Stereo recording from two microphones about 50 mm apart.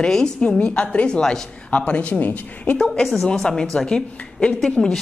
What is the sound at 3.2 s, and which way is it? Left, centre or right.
A woman's voice, centre.